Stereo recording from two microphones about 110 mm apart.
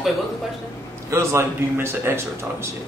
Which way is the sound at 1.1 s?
25° right (ahead or behind).